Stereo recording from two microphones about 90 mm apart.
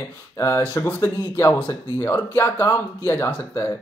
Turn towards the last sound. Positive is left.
turn(degrees=20)  # may be behind; listen again after turning